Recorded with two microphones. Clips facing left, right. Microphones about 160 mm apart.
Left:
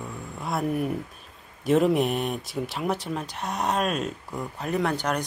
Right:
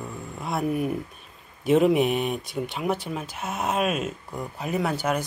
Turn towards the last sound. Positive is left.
turn(degrees=-5)  # may be behind; listen again after turning